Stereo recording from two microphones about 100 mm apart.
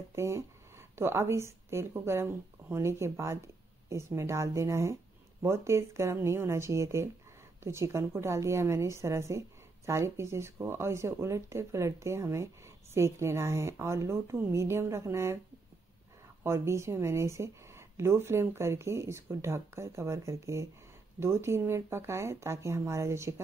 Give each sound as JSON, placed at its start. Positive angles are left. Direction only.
{"t": 0.1, "sound": "speech", "side_deg": -25}
{"t": 16.4, "sound": "speech", "side_deg": -30}